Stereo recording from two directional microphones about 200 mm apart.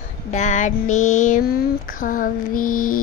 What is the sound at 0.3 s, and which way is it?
Female singing, 35° left (ahead or behind).